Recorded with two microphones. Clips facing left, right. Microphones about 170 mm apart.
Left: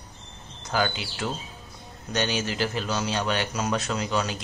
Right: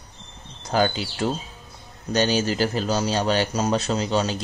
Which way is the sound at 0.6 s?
35° right (ahead or behind).